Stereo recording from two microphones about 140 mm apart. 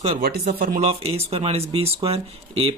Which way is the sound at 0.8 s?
50° right (ahead or behind).